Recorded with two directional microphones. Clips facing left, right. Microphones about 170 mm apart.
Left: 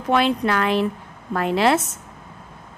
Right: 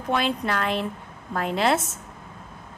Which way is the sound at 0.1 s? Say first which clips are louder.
Left 6 dB; 75° left (ahead or behind).